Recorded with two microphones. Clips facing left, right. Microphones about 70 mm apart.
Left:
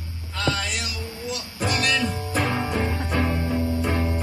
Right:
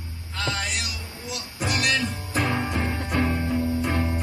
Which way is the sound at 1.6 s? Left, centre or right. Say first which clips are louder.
Left 1 dB; centre.